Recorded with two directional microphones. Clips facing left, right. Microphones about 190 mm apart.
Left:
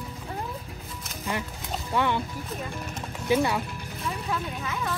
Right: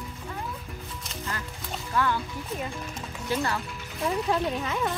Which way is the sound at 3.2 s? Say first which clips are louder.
Left 5 dB; 10° left (ahead or behind).